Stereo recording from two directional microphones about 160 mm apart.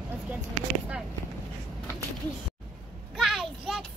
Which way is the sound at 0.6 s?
45° right (ahead or behind).